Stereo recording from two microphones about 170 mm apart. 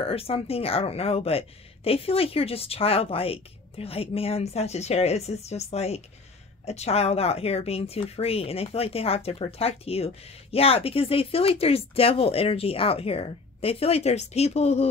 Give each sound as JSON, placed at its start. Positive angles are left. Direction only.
{"t": 0.0, "sound": "speech", "side_deg": 35}